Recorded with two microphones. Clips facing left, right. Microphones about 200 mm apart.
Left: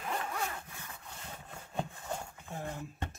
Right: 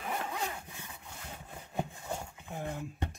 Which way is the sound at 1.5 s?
15° right (ahead or behind).